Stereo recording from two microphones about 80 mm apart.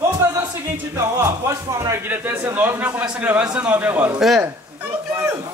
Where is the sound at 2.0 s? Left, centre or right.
Right.